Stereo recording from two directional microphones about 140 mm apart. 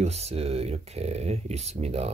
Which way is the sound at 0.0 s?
50° right (ahead or behind).